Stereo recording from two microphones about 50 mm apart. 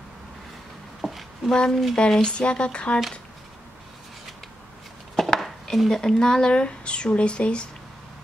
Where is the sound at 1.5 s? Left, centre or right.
Centre.